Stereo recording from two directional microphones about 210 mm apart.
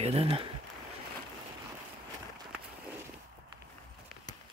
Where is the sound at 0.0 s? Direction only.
30° right (ahead or behind).